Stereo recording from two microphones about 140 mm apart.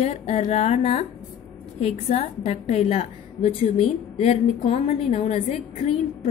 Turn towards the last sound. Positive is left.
turn(degrees=50)  # may be behind; listen again after turning